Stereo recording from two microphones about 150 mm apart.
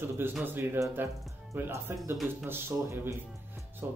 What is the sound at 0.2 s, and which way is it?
Speech, 15° right (ahead or behind).